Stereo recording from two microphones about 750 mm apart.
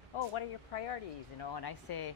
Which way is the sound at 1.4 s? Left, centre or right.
Left.